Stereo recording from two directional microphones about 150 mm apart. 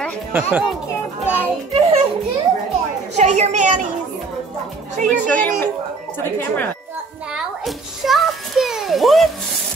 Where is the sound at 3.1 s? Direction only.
50° right (ahead or behind).